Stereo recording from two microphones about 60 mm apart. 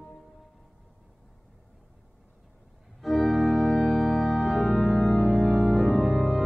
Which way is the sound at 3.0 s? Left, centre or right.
Centre.